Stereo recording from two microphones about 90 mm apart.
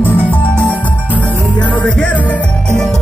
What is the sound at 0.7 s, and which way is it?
Music, 15° left (ahead or behind).